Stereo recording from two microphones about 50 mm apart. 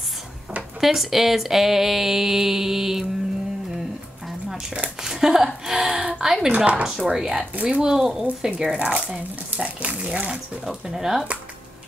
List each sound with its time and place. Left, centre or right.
0.7 s speech: centre
5.0 s speech: centre
6.5 s speech: right
6.8 s speech: centre
8.7 s speech: right
10.6 s speech: centre